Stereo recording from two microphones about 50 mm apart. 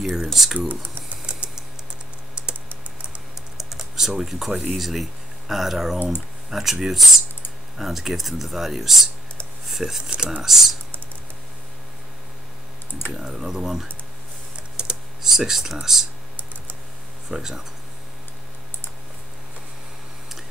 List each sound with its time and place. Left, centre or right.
0.3 s speech: centre
1.2 s typing: centre
3.5 s typing: centre
4.2 s speech: centre
13.1 s speech: centre
14.8 s computer keyboard: centre
15.2 s speech: centre
17.3 s speech: centre